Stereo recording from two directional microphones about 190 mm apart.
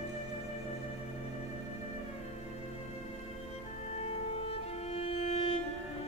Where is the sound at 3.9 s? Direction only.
30° left (ahead or behind).